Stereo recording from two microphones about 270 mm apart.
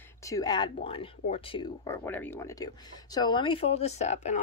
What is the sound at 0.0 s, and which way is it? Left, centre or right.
Speech, centre.